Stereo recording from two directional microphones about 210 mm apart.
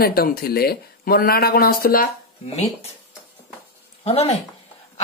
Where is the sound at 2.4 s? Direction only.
30° left (ahead or behind).